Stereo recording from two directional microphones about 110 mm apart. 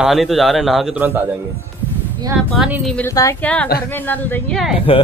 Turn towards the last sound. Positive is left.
turn(degrees=0)  # may be behind; listen again after turning